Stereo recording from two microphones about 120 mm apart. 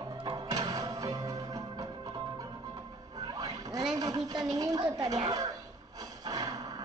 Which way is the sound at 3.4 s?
30° right (ahead or behind).